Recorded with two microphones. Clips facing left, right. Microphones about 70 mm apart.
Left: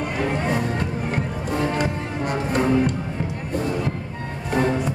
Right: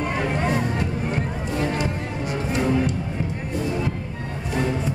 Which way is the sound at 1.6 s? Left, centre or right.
Left.